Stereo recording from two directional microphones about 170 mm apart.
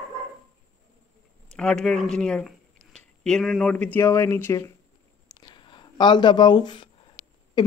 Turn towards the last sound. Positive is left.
turn(degrees=25)  # may be behind; listen again after turning